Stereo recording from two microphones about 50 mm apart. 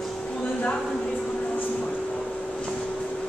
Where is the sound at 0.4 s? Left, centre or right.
Left.